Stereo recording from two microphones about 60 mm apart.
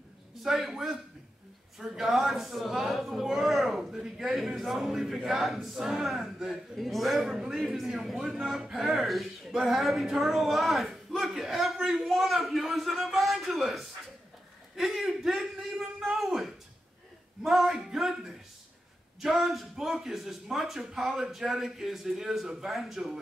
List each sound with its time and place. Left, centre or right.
0.4 s a man's voice: centre
14.8 s a sound: centre
17.4 s a man's voice: centre